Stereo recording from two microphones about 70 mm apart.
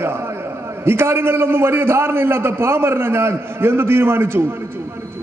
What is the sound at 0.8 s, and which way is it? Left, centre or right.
A man's voice, right.